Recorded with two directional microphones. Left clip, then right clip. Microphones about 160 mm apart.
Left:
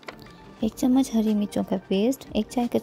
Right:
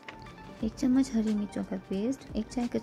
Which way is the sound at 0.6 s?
35° left (ahead or behind).